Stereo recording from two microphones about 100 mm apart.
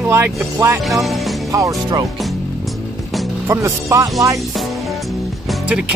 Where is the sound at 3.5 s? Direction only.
30° right (ahead or behind).